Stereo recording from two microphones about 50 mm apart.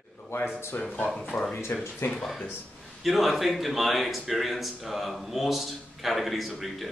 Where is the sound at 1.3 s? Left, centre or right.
Left.